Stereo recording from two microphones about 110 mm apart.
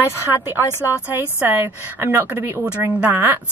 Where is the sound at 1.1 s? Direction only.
20° right (ahead or behind).